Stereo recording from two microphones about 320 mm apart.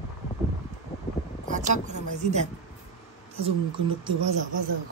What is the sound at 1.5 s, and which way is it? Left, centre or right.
Speech, right.